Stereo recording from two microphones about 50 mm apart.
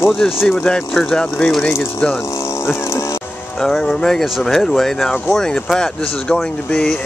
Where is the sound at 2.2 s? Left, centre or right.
Left.